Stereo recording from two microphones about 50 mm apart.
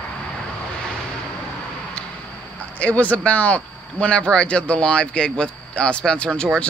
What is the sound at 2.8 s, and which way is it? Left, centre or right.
Speech, left.